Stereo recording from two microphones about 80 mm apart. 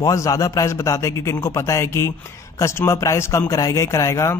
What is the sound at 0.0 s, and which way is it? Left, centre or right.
A man's voice, left.